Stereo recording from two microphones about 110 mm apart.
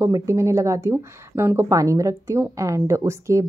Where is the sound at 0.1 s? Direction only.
30° right (ahead or behind).